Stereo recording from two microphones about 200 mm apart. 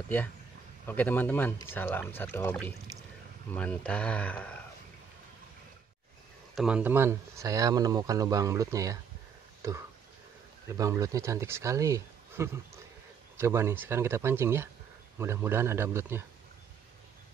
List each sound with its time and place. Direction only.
0.8 s speech: 10° left (ahead or behind)
6.5 s speech: 5° right (ahead or behind)
9.6 s a sound: 15° right (ahead or behind)
10.7 s speech: 15° right (ahead or behind)